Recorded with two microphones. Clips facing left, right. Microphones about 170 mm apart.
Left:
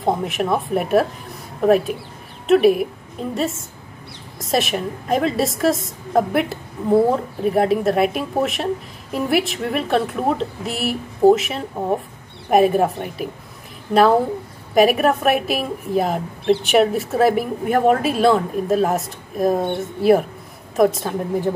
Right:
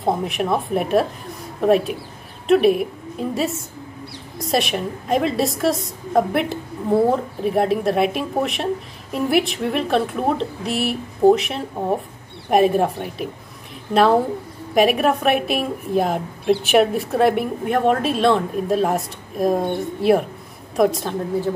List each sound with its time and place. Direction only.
0.0 s a woman's voice: centre (ahead or behind)
14.7 s a woman's voice: centre (ahead or behind)